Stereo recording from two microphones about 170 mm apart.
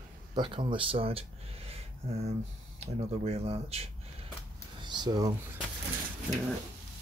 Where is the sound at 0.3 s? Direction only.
30° right (ahead or behind).